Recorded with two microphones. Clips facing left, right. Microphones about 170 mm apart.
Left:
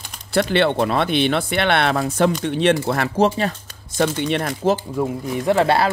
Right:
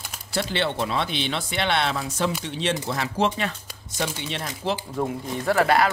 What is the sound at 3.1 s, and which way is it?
Speech, 40° left (ahead or behind).